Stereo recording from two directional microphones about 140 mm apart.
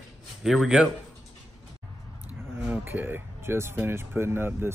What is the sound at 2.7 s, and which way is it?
Speech, 15° right (ahead or behind).